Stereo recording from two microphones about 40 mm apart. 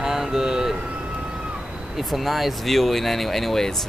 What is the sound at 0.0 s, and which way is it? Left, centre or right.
Vehicle, centre.